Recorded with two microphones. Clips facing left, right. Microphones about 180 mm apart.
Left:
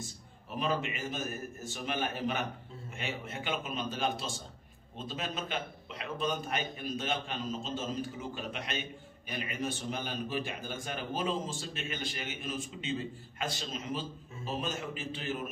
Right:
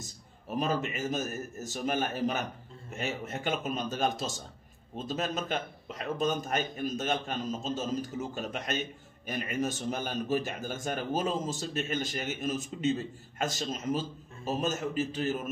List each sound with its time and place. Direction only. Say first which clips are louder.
0.0 s a man's voice: left 1 dB; 45° right (ahead or behind)